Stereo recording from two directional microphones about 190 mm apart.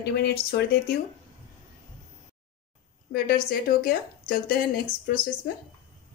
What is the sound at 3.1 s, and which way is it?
Speech, 50° left (ahead or behind).